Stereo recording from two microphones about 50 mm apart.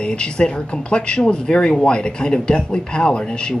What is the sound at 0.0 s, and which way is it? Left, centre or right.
Speech, centre.